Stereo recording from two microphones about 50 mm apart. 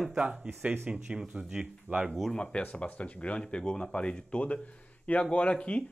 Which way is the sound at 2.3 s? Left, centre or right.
Left.